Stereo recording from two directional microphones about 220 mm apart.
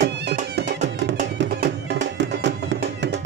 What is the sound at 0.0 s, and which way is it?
Music, 50° right (ahead or behind).